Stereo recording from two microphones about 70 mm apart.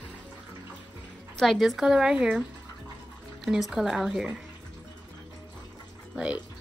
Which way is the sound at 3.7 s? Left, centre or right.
Centre.